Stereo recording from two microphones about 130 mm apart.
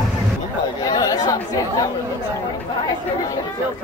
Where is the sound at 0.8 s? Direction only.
25° left (ahead or behind).